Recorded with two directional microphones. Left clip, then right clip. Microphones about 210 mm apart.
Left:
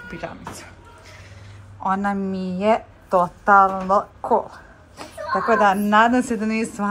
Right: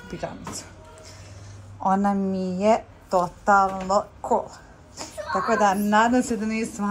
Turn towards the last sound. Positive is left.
turn(degrees=-5)  # may be behind; listen again after turning